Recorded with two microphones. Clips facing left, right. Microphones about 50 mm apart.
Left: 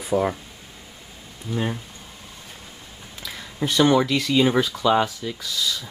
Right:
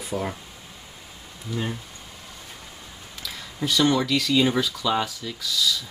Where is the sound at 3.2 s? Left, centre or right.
Left.